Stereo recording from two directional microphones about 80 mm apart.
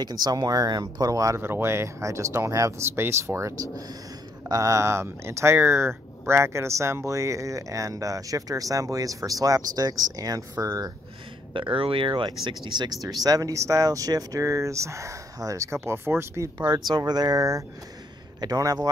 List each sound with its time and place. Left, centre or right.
0.0 s speech: right
1.4 s speech: right
11.5 s speech: right
13.0 s speech: right
16.5 s speech: right